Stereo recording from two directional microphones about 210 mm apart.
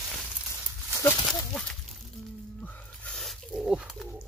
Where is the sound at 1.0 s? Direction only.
15° left (ahead or behind).